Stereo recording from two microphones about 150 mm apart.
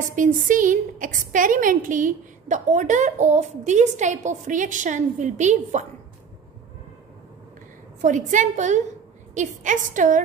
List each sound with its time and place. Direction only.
0.0 s a woman's voice: 60° right (ahead or behind)
8.0 s a woman's voice: 55° right (ahead or behind)